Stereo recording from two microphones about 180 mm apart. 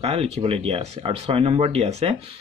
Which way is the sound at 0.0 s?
35° right (ahead or behind).